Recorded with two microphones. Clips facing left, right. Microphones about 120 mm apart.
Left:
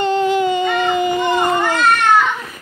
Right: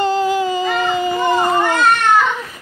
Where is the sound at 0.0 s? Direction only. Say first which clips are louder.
Left 1 dB; 35° right (ahead or behind).